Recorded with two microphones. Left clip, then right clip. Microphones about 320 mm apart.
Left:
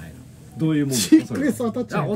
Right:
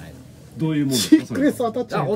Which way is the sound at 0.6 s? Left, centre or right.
Centre.